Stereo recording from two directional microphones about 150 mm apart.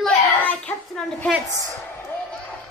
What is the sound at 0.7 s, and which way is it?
Speech, 15° left (ahead or behind).